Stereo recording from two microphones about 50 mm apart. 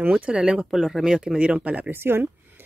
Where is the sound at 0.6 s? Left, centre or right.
Centre.